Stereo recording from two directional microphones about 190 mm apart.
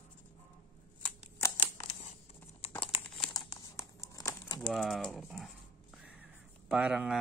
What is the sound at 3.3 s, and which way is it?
Crumpling, 20° left (ahead or behind).